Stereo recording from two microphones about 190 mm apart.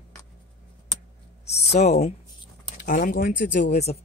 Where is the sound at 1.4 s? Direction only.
35° left (ahead or behind).